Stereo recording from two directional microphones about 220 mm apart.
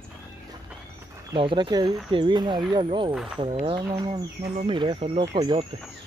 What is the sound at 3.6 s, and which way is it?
Speech, 25° right (ahead or behind).